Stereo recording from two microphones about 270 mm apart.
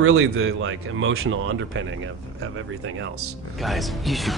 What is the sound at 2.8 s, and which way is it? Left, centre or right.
Speech, right.